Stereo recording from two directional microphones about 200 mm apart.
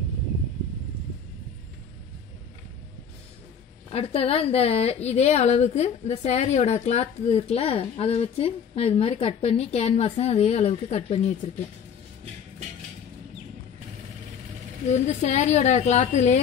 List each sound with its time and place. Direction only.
3.9 s a woman's voice: 30° left (ahead or behind)
14.9 s a woman's voice: 35° left (ahead or behind)